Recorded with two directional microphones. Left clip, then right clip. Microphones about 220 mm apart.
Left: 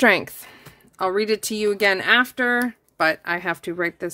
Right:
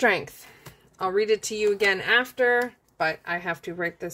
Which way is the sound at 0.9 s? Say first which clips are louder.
Left 2 dB; 45° left (ahead or behind).